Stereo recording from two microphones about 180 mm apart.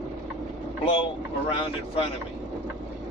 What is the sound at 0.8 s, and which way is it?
Speech, 30° left (ahead or behind).